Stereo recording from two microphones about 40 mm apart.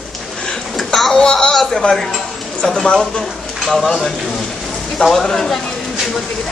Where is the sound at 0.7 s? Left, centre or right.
Centre.